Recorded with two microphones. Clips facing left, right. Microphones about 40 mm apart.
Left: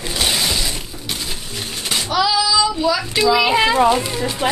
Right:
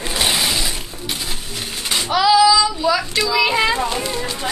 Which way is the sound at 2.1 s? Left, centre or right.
Centre.